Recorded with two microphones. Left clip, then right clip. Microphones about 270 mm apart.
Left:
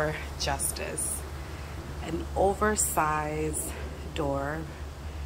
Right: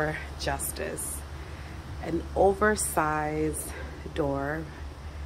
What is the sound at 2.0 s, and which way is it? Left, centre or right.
A woman's voice, centre.